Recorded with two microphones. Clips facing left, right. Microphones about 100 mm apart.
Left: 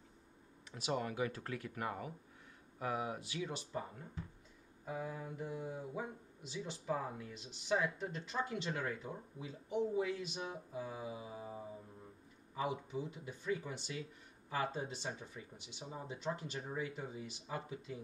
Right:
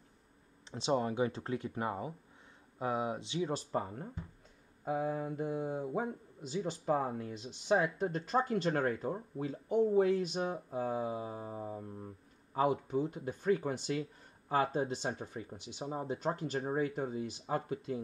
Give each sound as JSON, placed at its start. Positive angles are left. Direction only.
{"t": 0.7, "sound": "speech", "side_deg": -25}